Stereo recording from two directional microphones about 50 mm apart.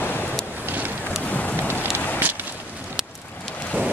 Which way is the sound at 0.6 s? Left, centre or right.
Right.